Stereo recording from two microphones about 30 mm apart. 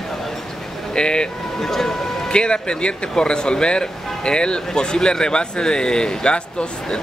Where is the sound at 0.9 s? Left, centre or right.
Left.